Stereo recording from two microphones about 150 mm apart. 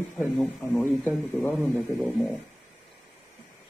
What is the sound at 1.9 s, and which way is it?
Speech, centre (ahead or behind).